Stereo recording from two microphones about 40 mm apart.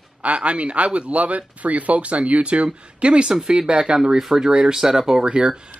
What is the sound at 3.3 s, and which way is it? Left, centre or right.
Speech, centre.